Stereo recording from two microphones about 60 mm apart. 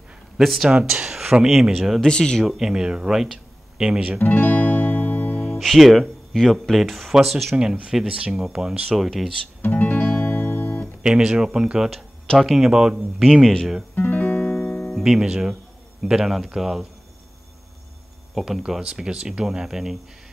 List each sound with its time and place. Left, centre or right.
0.4 s a man's voice: centre
0.7 s speech: centre
2.0 s speech: centre
2.4 s speech: centre
4.2 s music: left
5.4 s speech: centre
8.1 s a man's voice: centre
9.6 s music: left
11.0 s a man's voice: centre
13.2 s a man's voice: centre
13.9 s music: left
14.8 s a man's voice: centre
18.3 s speech: centre